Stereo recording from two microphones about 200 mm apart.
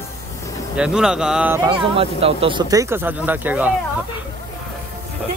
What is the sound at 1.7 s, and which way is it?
Speech, 25° right (ahead or behind).